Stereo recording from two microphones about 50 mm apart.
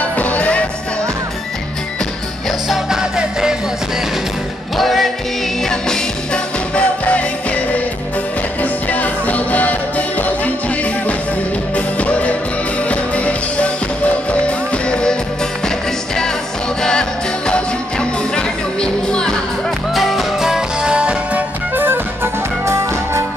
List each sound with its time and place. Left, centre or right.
0.0 s music: left
2.7 s music: centre
4.7 s music: centre
5.6 s music: centre; by 7.8 s left
8.8 s music: left
17.5 s music: centre
19.9 s music: centre; by 21.4 s right
21.4 s music: right